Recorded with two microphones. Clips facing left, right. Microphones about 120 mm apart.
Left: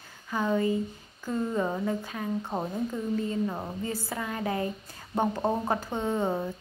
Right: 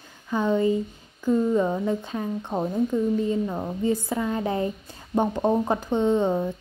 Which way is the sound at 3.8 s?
20° right (ahead or behind).